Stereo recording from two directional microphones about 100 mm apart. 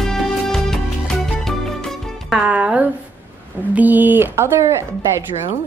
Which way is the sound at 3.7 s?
15° right (ahead or behind).